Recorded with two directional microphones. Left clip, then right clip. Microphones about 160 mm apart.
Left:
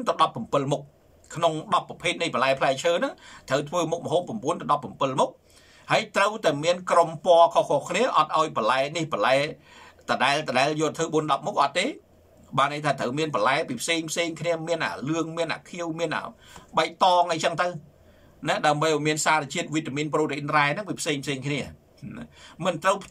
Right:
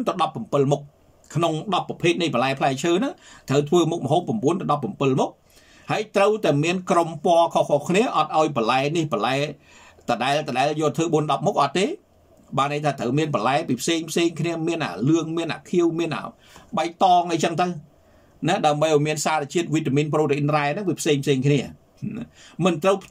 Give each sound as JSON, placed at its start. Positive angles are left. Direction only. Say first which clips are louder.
{"t": 0.0, "sound": "a man's voice", "louder": "even", "side_deg": -30}